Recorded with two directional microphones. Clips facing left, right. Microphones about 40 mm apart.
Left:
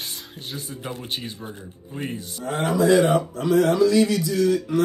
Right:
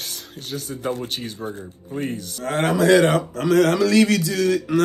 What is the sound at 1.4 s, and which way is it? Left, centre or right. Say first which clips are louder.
Speech: right 6 dB; right.